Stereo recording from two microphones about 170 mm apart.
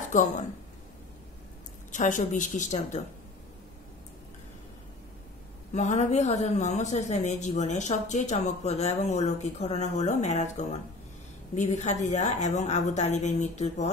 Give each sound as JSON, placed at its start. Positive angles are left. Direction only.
{"t": 0.1, "sound": "a man's voice", "side_deg": 45}
{"t": 1.9, "sound": "a man's voice", "side_deg": 45}
{"t": 5.7, "sound": "a man's voice", "side_deg": 40}